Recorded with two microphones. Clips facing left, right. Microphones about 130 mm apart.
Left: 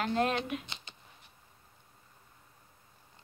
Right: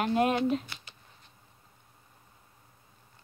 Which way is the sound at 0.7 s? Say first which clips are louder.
Even; 20° left (ahead or behind).